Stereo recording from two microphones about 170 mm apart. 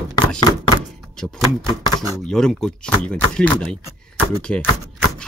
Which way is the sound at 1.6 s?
25° left (ahead or behind).